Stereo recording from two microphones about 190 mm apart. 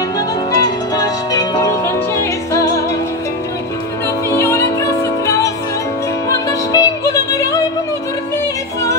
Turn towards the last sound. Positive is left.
turn(degrees=15)  # may be behind; listen again after turning